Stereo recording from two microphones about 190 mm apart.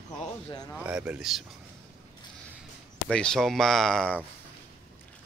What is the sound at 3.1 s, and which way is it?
Speech, 5° left (ahead or behind).